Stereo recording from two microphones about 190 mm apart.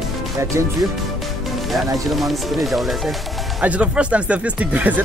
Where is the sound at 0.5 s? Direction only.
15° right (ahead or behind).